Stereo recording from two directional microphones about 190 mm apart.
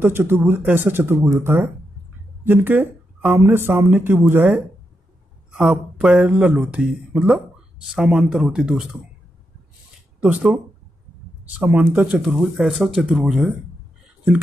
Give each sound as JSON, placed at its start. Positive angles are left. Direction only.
{"t": 0.0, "sound": "speech", "side_deg": -10}
{"t": 5.6, "sound": "speech", "side_deg": -5}
{"t": 10.2, "sound": "speech", "side_deg": -5}